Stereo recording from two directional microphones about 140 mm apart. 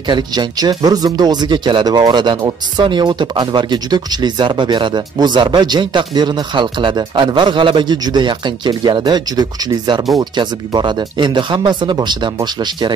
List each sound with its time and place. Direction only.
0.1 s speech: 30° right (ahead or behind)